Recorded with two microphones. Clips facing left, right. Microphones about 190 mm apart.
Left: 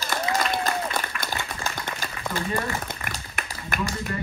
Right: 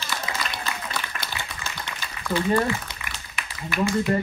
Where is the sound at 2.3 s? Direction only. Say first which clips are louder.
Right 7 dB; 50° left (ahead or behind).